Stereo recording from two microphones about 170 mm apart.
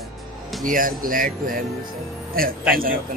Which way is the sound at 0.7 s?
55° right (ahead or behind).